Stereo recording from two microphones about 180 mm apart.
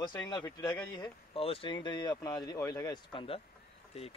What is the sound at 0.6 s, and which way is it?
Speech, 25° left (ahead or behind).